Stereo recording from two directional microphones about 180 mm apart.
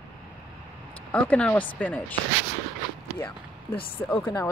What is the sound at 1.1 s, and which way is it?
Speech, 5° left (ahead or behind).